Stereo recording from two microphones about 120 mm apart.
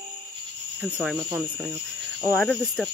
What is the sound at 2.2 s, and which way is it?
Speech, centre (ahead or behind).